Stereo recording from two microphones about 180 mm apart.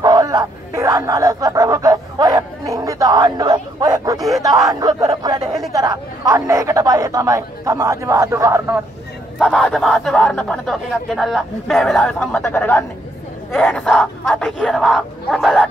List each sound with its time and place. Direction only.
0.0 s speech: 20° right (ahead or behind)
9.4 s speech: centre (ahead or behind)